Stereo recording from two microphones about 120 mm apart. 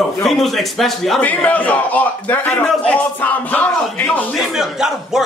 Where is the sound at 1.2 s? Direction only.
10° left (ahead or behind).